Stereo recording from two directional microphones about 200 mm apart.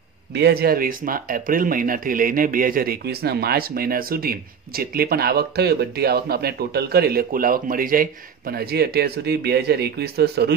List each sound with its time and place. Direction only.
0.3 s speech: 55° right (ahead or behind)